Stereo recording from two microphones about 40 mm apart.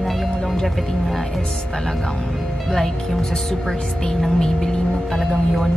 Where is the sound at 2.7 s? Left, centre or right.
Centre.